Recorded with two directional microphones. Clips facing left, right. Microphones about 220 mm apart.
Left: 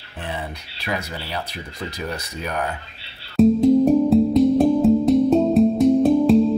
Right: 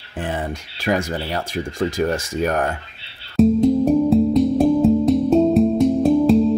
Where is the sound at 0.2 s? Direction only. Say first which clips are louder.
Right 5 dB; 45° right (ahead or behind).